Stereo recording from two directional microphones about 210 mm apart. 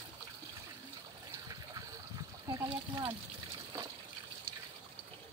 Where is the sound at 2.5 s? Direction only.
20° right (ahead or behind).